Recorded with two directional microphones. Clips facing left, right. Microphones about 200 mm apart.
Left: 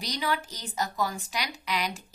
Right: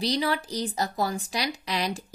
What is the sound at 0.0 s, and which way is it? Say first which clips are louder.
Speech: right 5 dB; 30° right (ahead or behind).